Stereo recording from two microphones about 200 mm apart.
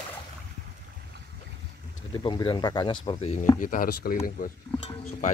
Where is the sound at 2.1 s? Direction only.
25° left (ahead or behind).